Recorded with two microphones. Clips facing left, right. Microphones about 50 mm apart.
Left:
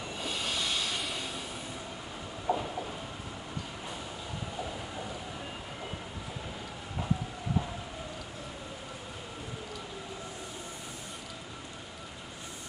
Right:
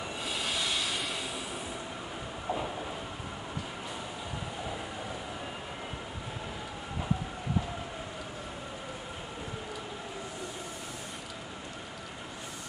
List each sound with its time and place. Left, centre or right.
0.2 s train: centre
2.5 s train: right